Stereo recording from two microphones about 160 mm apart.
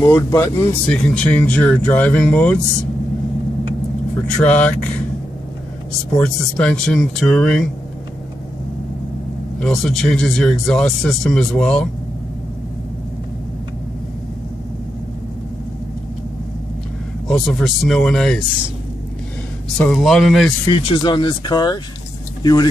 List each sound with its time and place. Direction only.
0.0 s speech: 15° left (ahead or behind)
0.8 s speech: 5° left (ahead or behind)
4.4 s speech: 10° left (ahead or behind)
6.1 s speech: 5° left (ahead or behind)
9.6 s speech: centre (ahead or behind)
17.3 s speech: centre (ahead or behind)
19.8 s speech: centre (ahead or behind)
20.6 s speech: 30° left (ahead or behind)